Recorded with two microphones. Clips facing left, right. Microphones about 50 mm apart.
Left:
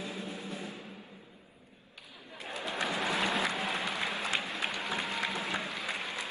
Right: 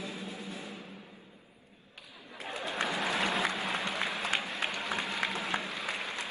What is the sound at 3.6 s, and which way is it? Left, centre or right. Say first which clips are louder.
Applause: even; right.